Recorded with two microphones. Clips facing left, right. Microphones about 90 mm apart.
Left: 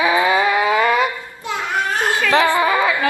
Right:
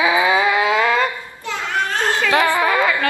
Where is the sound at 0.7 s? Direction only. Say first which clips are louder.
Left 1 dB; 15° left (ahead or behind).